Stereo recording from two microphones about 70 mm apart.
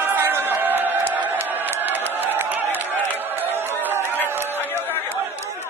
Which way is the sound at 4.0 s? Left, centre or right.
Left.